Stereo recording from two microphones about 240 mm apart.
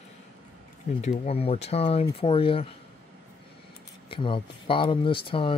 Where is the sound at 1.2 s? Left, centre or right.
Left.